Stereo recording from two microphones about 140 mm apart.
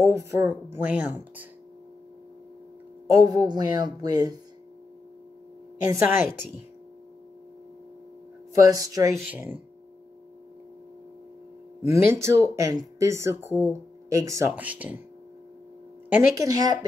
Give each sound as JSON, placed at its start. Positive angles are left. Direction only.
{"t": 0.0, "sound": "speech", "side_deg": -20}
{"t": 3.1, "sound": "speech", "side_deg": -25}
{"t": 5.9, "sound": "a woman's voice", "side_deg": -15}
{"t": 8.5, "sound": "speech", "side_deg": -25}
{"t": 9.2, "sound": "a woman's voice", "side_deg": -10}
{"t": 11.8, "sound": "speech", "side_deg": -20}
{"t": 14.5, "sound": "a woman's voice", "side_deg": -10}
{"t": 16.1, "sound": "a woman's voice", "side_deg": -15}
{"t": 16.4, "sound": "speech", "side_deg": -25}